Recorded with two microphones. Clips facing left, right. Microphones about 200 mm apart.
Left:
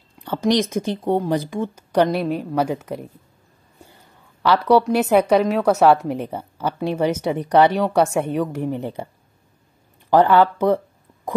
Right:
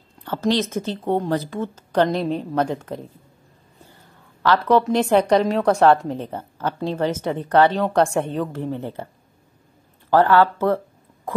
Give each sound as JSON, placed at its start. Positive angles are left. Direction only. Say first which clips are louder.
{"t": 0.2, "sound": "a woman's voice", "louder": "left 2 dB", "side_deg": 15}
{"t": 4.4, "sound": "a woman's voice", "louder": "left 2 dB", "side_deg": 10}